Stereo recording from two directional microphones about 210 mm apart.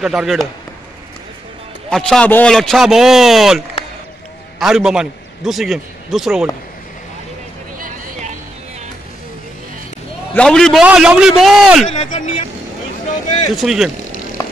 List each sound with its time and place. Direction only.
0.0 s a man's voice: centre (ahead or behind)
1.9 s a man's voice: 5° left (ahead or behind)
10.3 s a man's voice: 5° left (ahead or behind)
11.9 s speech: 30° left (ahead or behind)
13.6 s a man's voice: centre (ahead or behind)